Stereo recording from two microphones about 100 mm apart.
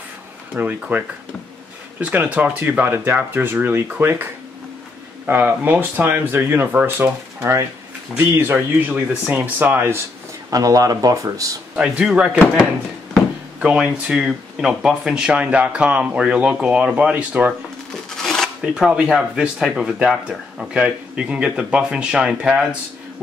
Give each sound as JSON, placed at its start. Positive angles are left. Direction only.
{"t": 0.6, "sound": "speech", "side_deg": -15}
{"t": 10.5, "sound": "speech", "side_deg": -35}
{"t": 11.7, "sound": "speech", "side_deg": -5}
{"t": 13.6, "sound": "speech", "side_deg": -10}
{"t": 18.1, "sound": "a sound", "side_deg": 5}
{"t": 18.6, "sound": "speech", "side_deg": -10}